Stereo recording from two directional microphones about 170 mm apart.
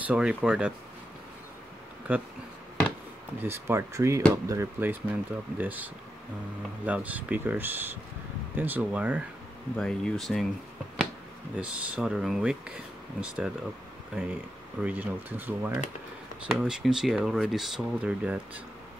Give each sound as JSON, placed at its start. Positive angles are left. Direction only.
{"t": 0.0, "sound": "speech", "side_deg": -5}
{"t": 2.1, "sound": "speech", "side_deg": -10}
{"t": 3.3, "sound": "speech", "side_deg": -15}
{"t": 6.9, "sound": "speech", "side_deg": -10}
{"t": 9.8, "sound": "speech", "side_deg": 5}
{"t": 11.5, "sound": "speech", "side_deg": -5}
{"t": 14.8, "sound": "speech", "side_deg": -10}